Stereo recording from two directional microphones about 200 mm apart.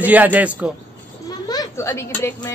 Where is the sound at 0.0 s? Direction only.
10° right (ahead or behind).